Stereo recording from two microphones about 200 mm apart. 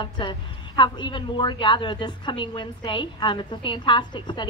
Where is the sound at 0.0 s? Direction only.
25° left (ahead or behind).